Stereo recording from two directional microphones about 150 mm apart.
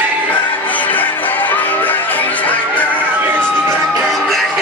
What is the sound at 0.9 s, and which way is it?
Music, 10° left (ahead or behind).